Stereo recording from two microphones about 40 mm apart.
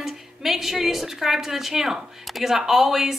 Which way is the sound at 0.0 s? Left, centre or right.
Centre.